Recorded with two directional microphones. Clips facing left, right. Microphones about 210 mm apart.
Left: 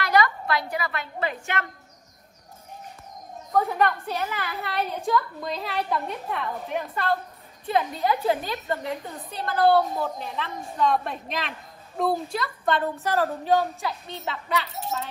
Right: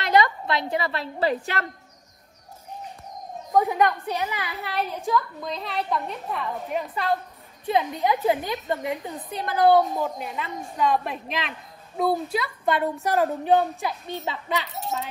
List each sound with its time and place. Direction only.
0.0 s a woman's voice: 20° right (ahead or behind)
3.5 s a woman's voice: 15° right (ahead or behind)
4.4 s a woman's voice: centre (ahead or behind)
7.7 s a woman's voice: 15° right (ahead or behind)